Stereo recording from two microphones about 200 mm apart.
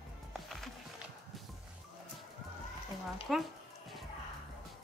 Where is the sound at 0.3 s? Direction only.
Centre (ahead or behind).